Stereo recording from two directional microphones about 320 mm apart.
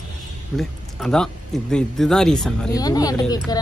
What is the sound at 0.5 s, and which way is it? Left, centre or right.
Speech, centre.